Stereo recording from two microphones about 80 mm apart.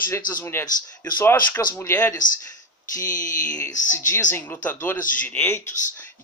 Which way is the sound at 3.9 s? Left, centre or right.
Left.